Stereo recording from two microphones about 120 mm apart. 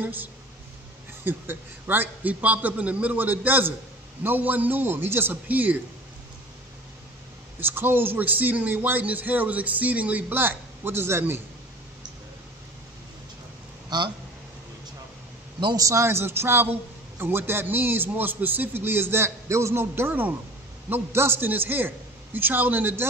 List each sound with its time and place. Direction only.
0.0 s a man's voice: 15° right (ahead or behind)
7.6 s a man's voice: 20° right (ahead or behind)
13.8 s speech: 40° right (ahead or behind)
15.6 s a man's voice: 30° right (ahead or behind)